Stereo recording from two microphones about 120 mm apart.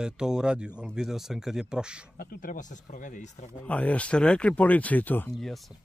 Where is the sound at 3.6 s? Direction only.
10° left (ahead or behind).